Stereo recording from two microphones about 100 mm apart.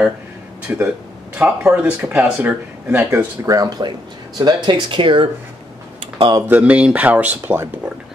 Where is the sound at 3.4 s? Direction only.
40° right (ahead or behind); by 5.3 s 55° right (ahead or behind).